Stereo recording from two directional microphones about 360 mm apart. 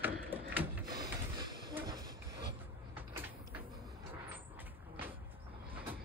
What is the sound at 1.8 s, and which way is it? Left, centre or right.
Train, centre.